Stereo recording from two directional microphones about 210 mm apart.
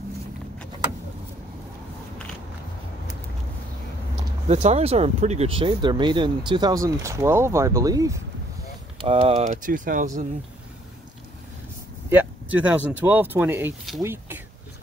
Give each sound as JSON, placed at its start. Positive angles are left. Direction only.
{"t": 4.5, "sound": "speech", "side_deg": -30}
{"t": 9.0, "sound": "speech", "side_deg": -25}
{"t": 12.1, "sound": "speech", "side_deg": -10}